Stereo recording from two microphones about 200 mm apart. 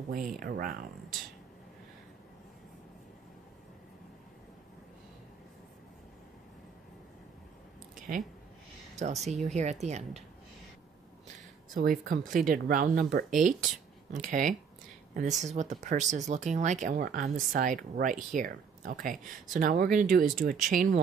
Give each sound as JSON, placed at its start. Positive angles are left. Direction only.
{"t": 0.1, "sound": "speech", "side_deg": -45}
{"t": 8.9, "sound": "speech", "side_deg": -35}
{"t": 11.7, "sound": "speech", "side_deg": -45}